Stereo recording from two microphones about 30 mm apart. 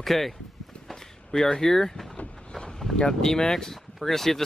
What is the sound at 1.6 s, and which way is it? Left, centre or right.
Speech, centre.